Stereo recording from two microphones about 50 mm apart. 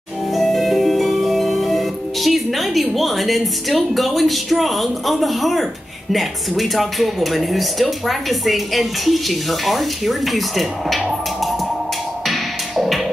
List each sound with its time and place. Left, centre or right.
0.3 s music: centre
6.1 s speech: centre
12.3 s music: centre